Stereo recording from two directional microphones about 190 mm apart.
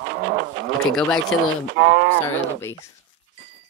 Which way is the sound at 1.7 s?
60° right (ahead or behind).